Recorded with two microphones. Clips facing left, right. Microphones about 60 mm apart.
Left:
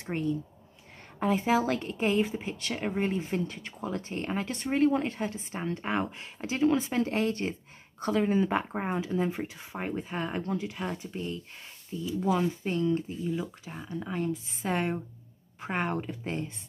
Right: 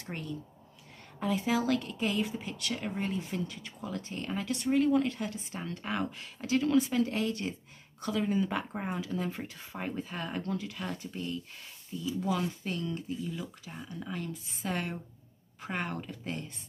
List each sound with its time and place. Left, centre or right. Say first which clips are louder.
0.0 s speech: left 8 dB; left
1.2 s speech: left 4 dB; left